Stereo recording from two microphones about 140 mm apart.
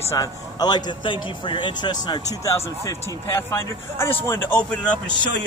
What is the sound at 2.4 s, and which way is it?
A man's voice, 20° left (ahead or behind).